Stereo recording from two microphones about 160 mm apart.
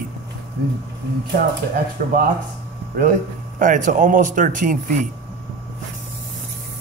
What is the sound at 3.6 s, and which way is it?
A man's voice, 50° right (ahead or behind).